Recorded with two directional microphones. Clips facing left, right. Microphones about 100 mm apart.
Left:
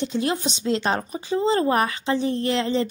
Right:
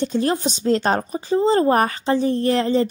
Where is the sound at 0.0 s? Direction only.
40° right (ahead or behind).